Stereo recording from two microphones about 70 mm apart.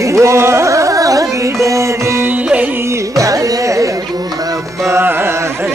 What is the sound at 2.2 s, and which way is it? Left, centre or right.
Music, right.